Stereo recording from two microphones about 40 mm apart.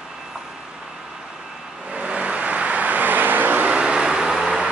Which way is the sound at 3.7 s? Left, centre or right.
Right.